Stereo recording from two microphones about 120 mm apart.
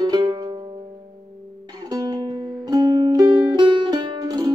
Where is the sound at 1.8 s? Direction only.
30° right (ahead or behind).